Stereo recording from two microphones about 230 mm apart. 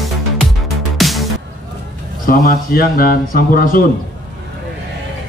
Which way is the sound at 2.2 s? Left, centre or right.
Left.